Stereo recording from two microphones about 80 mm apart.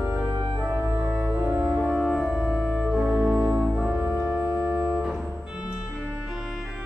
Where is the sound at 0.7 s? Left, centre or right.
Right.